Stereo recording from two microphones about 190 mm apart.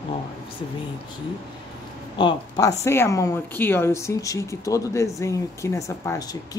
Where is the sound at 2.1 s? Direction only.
25° left (ahead or behind).